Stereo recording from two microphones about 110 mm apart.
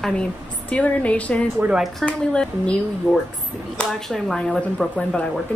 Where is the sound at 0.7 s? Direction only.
10° left (ahead or behind).